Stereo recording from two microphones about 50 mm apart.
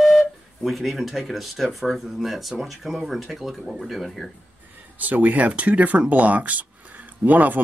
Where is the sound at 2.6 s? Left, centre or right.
Centre.